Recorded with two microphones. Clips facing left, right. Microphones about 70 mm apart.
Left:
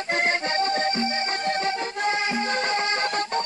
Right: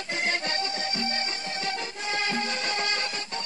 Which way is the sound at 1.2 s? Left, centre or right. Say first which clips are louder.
Left 8 dB; left.